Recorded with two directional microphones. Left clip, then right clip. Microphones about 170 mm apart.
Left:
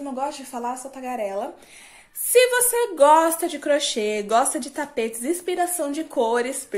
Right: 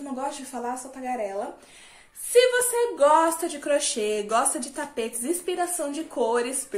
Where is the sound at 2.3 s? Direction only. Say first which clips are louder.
Left 2 dB; 60° left (ahead or behind).